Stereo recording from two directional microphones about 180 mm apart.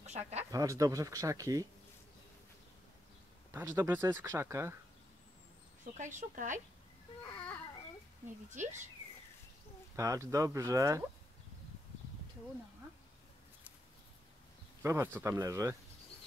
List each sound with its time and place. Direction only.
0.0 s speech: 40° right (ahead or behind)
0.4 s speech: 20° right (ahead or behind)
3.5 s speech: 15° right (ahead or behind)
5.9 s speech: 45° right (ahead or behind)
8.5 s speech: 45° right (ahead or behind)
9.9 s speech: 15° right (ahead or behind)
14.8 s speech: 15° right (ahead or behind)